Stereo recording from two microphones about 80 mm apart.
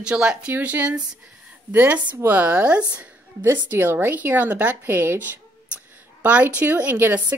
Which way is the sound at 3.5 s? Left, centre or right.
Right.